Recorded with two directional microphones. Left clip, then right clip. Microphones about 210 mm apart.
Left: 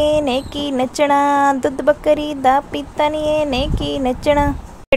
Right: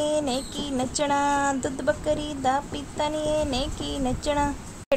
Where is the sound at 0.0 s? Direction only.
25° left (ahead or behind).